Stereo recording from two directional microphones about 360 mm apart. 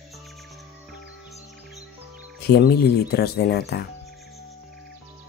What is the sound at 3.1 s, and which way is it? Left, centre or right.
Speech, left.